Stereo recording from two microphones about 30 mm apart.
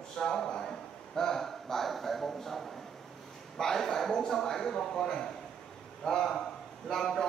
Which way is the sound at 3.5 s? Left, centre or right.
Centre.